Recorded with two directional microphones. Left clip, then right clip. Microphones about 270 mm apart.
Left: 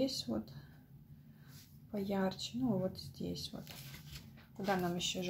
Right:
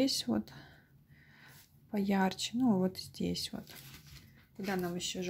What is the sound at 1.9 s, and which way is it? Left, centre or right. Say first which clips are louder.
Speech: right 5 dB; right.